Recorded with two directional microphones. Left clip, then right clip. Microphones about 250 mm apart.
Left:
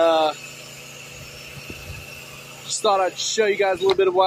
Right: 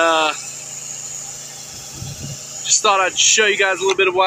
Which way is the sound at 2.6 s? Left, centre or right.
Centre.